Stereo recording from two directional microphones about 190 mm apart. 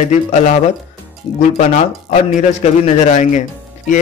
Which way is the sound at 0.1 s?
35° left (ahead or behind).